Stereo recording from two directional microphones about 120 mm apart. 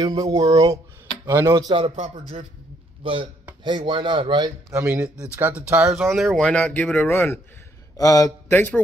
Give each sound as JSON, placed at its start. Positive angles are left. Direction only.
{"t": 0.0, "sound": "speech", "side_deg": -30}
{"t": 1.8, "sound": "speech", "side_deg": -50}
{"t": 4.6, "sound": "speech", "side_deg": -20}
{"t": 8.0, "sound": "speech", "side_deg": 30}
{"t": 8.5, "sound": "speech", "side_deg": 15}